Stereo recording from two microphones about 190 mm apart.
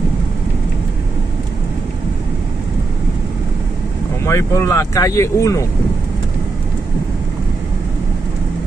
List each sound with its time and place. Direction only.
4.2 s speech: 15° left (ahead or behind)